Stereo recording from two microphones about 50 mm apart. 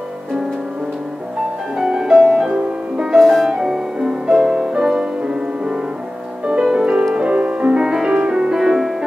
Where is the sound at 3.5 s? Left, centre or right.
Centre.